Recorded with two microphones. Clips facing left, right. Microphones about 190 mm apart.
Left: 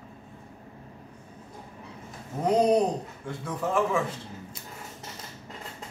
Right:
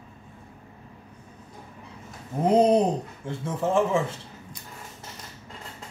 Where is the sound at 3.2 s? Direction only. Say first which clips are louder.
Right 4 dB; 25° right (ahead or behind).